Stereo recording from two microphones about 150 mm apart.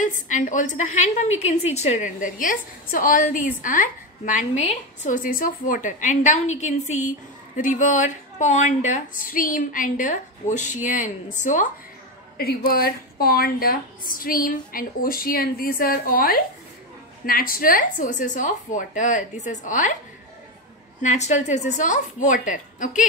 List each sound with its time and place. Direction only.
0.0 s a woman's voice: 60° left (ahead or behind)
12.4 s a woman's voice: 85° left; by 20.0 s 55° left (ahead or behind)
21.0 s a woman's voice: 50° left (ahead or behind)